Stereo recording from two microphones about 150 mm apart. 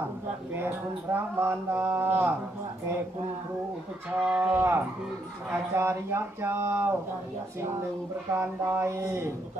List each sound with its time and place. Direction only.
0.5 s speech: 15° right (ahead or behind)
4.3 s speech: 10° right (ahead or behind)
8.3 s speech: 15° right (ahead or behind)